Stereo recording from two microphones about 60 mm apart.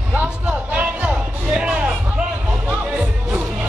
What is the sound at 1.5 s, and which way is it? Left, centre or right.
Music, centre.